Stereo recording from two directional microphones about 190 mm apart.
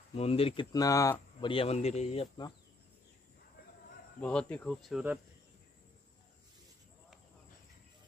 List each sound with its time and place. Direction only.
0.1 s speech: 30° left (ahead or behind)
0.7 s speech: 15° left (ahead or behind)
1.5 s speech: 30° left (ahead or behind)
4.2 s speech: 5° left (ahead or behind)